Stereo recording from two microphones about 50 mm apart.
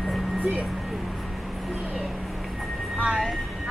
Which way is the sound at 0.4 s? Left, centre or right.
Right.